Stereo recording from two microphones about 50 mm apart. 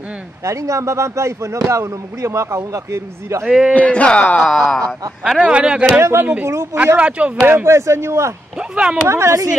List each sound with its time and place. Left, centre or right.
0.4 s speech: right
3.4 s speech: centre
3.7 s a man's voice: left
4.5 s speech: centre
5.2 s speech: centre
5.5 s speech: right
5.9 s speech: right
7.0 s speech: right
7.4 s speech: right
8.5 s speech: centre
9.1 s speech: right